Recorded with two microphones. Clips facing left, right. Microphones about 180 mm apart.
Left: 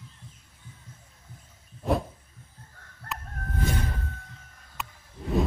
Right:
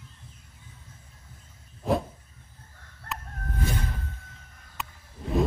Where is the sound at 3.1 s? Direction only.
Centre (ahead or behind).